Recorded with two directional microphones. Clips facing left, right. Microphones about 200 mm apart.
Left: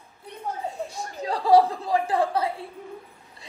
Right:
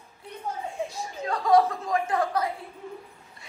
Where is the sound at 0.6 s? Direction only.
35° left (ahead or behind).